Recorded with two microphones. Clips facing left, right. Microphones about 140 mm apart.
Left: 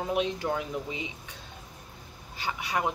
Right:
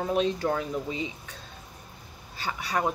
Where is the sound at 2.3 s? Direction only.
15° left (ahead or behind).